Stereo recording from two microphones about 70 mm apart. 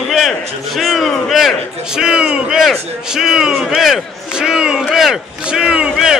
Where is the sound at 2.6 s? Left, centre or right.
Centre.